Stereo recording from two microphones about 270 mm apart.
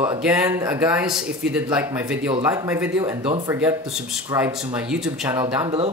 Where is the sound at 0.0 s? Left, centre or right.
Centre.